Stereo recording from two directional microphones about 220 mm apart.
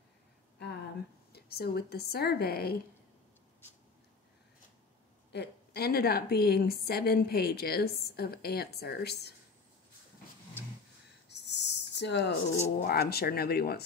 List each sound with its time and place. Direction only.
1.3 s a woman's voice: 45° left (ahead or behind)
5.3 s a woman's voice: 50° left (ahead or behind)
11.2 s cricket: 50° left (ahead or behind)
12.8 s a woman's voice: 45° left (ahead or behind)